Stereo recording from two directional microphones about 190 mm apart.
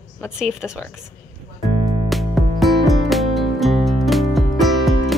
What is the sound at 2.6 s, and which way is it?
Music, centre (ahead or behind).